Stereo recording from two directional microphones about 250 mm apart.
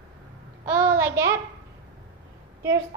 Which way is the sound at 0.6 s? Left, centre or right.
Centre.